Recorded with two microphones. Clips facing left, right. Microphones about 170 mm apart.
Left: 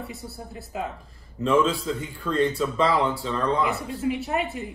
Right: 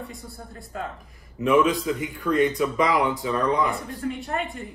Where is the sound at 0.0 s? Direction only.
5° left (ahead or behind).